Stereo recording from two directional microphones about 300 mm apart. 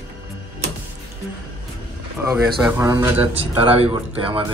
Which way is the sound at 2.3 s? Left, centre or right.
Centre.